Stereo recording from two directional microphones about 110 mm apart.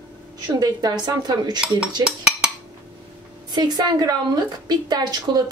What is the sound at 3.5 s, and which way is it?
Speech, 40° right (ahead or behind).